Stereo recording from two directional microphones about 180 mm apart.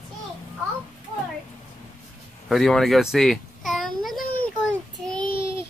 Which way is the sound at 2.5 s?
Centre (ahead or behind).